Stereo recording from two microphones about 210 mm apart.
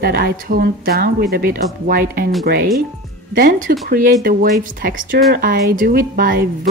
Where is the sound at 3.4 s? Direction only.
40° right (ahead or behind).